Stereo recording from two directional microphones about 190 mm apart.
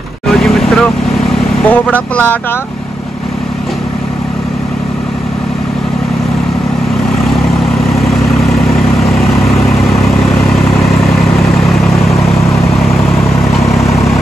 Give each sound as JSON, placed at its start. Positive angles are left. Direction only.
{"t": 0.4, "sound": "vehicle", "side_deg": 0}
{"t": 1.7, "sound": "speech", "side_deg": 10}